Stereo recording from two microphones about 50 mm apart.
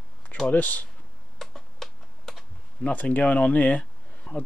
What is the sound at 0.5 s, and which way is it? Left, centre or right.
Speech, left.